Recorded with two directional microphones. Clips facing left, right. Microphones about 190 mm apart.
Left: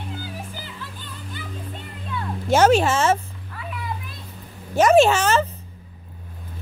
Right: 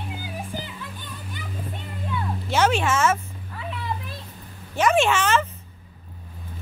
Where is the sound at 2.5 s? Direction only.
40° left (ahead or behind).